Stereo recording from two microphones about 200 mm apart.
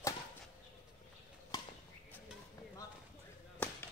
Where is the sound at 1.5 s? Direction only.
20° left (ahead or behind).